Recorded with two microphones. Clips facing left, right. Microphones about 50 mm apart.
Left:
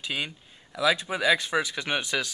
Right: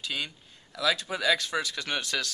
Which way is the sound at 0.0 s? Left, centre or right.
Centre.